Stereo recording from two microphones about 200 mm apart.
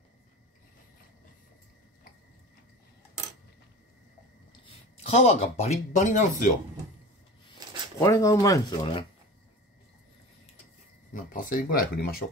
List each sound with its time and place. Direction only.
4.5 s speech: 30° left (ahead or behind)
8.0 s speech: 15° left (ahead or behind)
11.1 s speech: 45° left (ahead or behind)